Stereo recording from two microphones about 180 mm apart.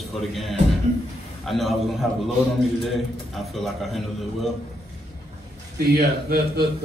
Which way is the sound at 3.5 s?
Centre (ahead or behind).